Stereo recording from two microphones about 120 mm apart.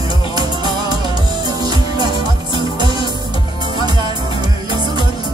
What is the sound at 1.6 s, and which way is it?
Music, 35° right (ahead or behind).